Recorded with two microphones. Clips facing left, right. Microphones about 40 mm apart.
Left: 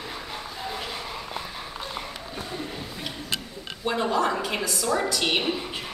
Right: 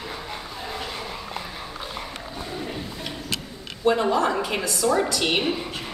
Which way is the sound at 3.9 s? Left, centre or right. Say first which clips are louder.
Right 4 dB; centre.